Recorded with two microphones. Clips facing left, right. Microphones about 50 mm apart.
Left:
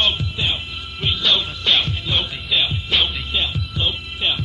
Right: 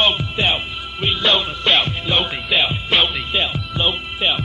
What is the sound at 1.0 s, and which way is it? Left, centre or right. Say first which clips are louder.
Music: right 2 dB; right.